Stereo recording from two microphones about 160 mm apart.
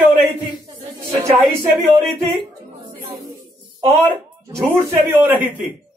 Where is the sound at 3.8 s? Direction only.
20° right (ahead or behind).